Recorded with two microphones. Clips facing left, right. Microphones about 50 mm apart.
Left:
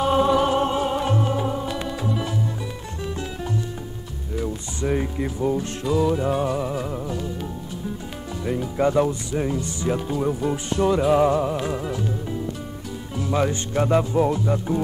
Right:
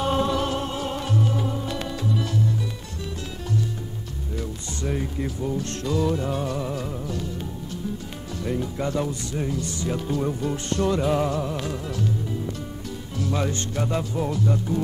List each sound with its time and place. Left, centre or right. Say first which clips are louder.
0.0 s music: left 5 dB; centre
4.4 s music: left 6 dB; left
5.9 s music: left 4 dB; centre
8.7 s speech: left 7 dB; left
10.0 s music: left 2 dB; centre
11.2 s speech: left 6 dB; centre
11.6 s music: left 2 dB; left
13.2 s speech: left 4 dB; centre